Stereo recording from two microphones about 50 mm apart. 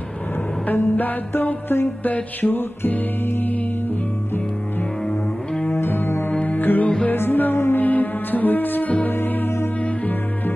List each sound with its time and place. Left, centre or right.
0.7 s music: left
5.0 s music: centre
5.7 s cello: left
6.6 s music: left
9.8 s music: left